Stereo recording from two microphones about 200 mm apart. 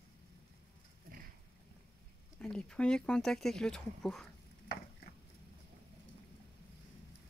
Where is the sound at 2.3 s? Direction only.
5° left (ahead or behind).